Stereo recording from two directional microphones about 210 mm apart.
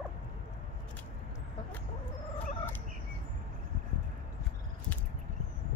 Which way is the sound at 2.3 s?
35° left (ahead or behind).